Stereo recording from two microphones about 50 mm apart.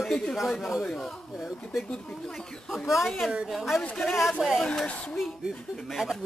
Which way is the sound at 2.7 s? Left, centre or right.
Centre.